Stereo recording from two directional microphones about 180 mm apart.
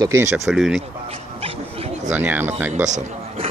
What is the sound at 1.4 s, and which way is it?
Wild animals, 30° right (ahead or behind).